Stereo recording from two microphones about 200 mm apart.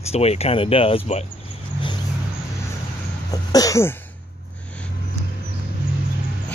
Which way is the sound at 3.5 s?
15° left (ahead or behind).